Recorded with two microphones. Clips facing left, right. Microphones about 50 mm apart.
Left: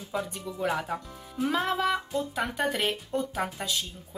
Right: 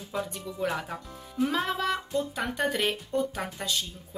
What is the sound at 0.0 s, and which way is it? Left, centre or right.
Speech, centre.